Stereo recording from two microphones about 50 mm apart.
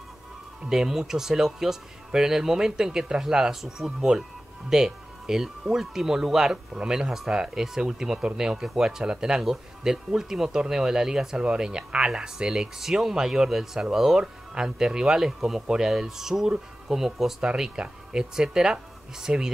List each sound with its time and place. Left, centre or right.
0.7 s speech: centre